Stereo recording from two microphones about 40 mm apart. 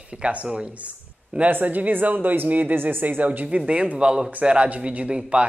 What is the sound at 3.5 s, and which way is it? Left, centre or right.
A woman's voice, right.